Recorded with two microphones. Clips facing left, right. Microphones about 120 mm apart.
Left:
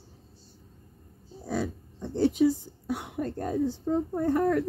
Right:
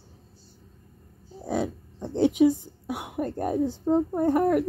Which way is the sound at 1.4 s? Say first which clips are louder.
Right 3 dB; 20° right (ahead or behind).